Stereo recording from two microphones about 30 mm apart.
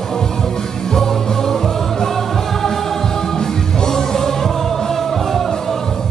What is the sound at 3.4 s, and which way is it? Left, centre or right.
Music, left.